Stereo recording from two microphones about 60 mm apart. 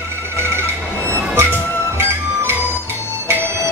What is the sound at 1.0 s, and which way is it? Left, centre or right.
Music, right.